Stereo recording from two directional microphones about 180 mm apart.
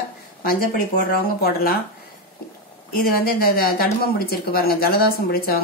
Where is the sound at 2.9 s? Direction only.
55° left (ahead or behind).